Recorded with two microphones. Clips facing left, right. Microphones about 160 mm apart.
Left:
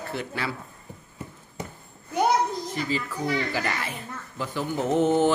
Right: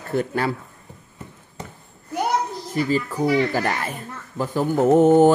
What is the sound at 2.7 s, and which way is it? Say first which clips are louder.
Speech: right 11 dB; 45° right (ahead or behind).